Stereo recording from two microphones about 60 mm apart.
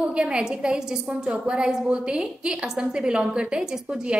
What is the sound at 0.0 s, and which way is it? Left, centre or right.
A woman's voice, centre.